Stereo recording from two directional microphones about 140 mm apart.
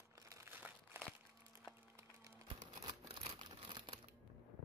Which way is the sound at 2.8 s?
30° right (ahead or behind).